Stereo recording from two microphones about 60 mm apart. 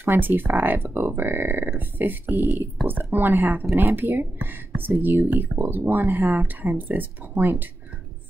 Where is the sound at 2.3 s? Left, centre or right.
Left.